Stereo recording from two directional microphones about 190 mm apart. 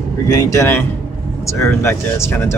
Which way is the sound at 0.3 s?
15° left (ahead or behind).